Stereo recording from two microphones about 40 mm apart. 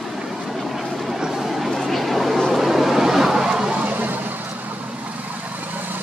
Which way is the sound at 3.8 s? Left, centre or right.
Right.